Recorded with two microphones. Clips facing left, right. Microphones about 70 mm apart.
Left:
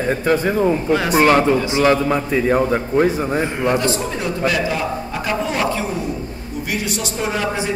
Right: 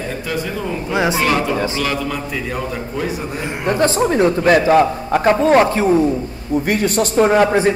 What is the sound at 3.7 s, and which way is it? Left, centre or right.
A man's voice, right.